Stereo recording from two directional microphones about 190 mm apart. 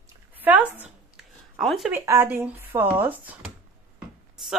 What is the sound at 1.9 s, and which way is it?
A woman's voice, 10° right (ahead or behind).